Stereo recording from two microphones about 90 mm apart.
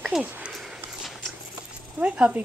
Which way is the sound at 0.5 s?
5° right (ahead or behind).